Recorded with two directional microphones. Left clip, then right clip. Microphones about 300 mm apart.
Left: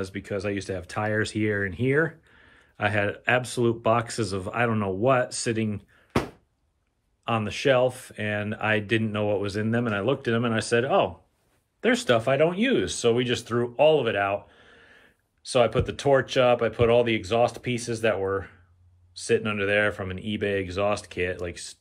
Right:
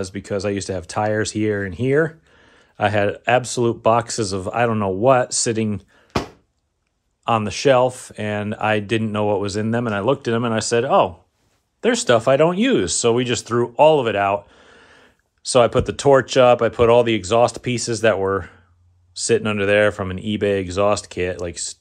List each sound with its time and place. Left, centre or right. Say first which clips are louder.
0.0 s speech: right 6 dB; centre
7.2 s speech: right 7 dB; centre